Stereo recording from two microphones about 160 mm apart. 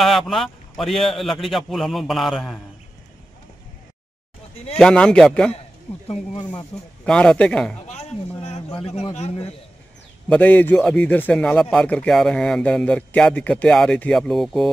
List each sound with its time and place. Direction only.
0.0 s speech: centre (ahead or behind)
4.7 s speech: 5° left (ahead or behind)
6.0 s a man's voice: 35° left (ahead or behind)
7.1 s speech: 5° left (ahead or behind)
7.8 s a man's voice: 45° left (ahead or behind)
10.2 s a man's voice: 10° left (ahead or behind)